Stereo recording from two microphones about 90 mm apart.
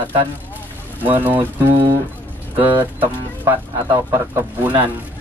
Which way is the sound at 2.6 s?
20° right (ahead or behind).